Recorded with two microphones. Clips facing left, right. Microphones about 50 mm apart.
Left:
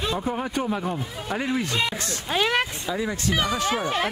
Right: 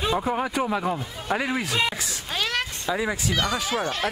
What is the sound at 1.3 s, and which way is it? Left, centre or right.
Speech, right.